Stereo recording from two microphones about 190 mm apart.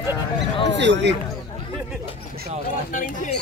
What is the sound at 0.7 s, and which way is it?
Speech, 65° right (ahead or behind).